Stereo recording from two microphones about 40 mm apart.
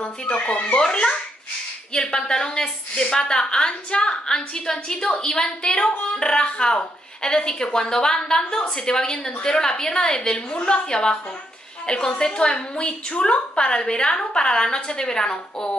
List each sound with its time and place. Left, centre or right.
0.0 s a woman's voice: left